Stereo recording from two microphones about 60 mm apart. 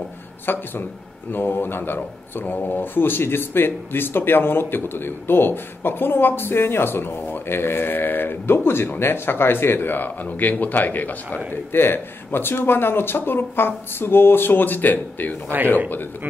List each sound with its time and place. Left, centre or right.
0.5 s speech: left